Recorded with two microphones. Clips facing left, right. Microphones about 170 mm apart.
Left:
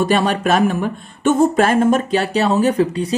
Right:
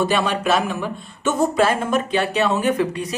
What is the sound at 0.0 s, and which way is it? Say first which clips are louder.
Speech: left 3 dB; 45° left (ahead or behind).